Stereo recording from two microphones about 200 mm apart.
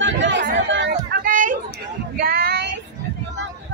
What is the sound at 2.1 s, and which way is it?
Child singing, 50° right (ahead or behind).